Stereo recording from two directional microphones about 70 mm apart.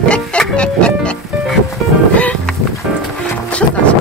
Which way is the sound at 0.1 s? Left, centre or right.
Centre.